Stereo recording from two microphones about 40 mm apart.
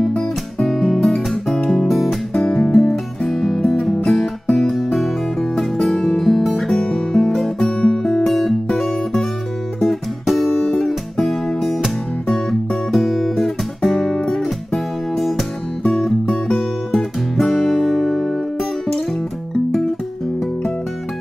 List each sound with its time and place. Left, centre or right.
0.7 s music: centre
2.3 s music: centre
6.7 s music: centre
7.8 s music: centre
8.3 s music: centre
10.2 s music: centre
12.4 s guitar: centre
13.9 s music: centre
16.5 s guitar: centre